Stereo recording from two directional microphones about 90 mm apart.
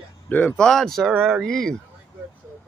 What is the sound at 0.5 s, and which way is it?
Speech, 5° left (ahead or behind).